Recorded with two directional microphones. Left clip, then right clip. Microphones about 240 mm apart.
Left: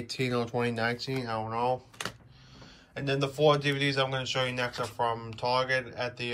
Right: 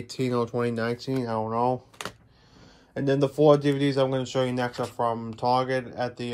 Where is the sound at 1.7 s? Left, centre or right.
Right.